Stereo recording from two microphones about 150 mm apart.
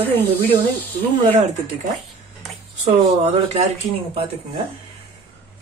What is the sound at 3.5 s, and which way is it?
Speech, 45° right (ahead or behind).